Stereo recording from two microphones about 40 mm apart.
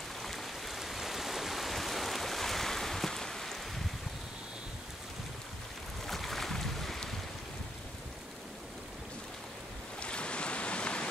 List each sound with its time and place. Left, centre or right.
0.2 s stream: centre
6.0 s boat: centre
9.9 s waves: left